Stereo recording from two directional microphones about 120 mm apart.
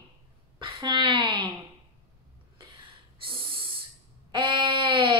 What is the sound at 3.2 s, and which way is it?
Owl, 45° right (ahead or behind).